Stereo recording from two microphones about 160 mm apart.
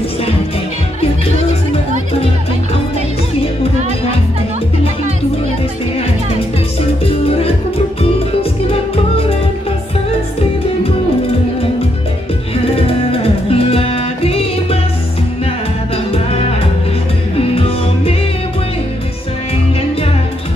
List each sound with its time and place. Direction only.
7.2 s music: 40° left (ahead or behind)
12.6 s music: 35° left (ahead or behind)
16.1 s music: 40° left (ahead or behind)